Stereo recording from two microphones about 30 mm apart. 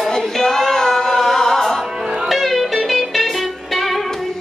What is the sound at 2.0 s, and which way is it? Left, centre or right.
Music, right.